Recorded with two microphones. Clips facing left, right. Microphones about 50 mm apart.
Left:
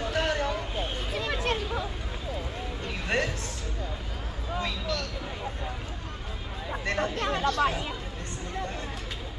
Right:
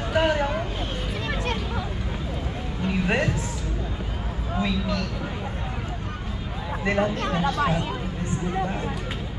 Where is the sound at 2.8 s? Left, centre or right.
Centre.